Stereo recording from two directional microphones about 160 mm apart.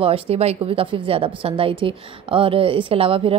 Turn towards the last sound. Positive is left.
turn(degrees=-35)  # may be behind; listen again after turning